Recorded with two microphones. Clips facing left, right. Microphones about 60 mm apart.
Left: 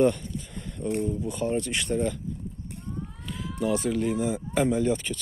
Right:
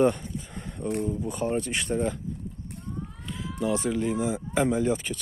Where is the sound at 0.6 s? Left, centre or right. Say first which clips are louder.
Left 1 dB; right.